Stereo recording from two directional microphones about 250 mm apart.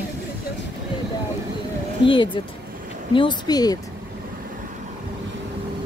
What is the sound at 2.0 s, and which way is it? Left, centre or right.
Speech, centre.